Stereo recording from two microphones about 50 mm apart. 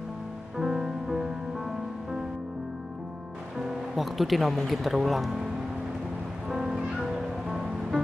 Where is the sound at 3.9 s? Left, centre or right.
Centre.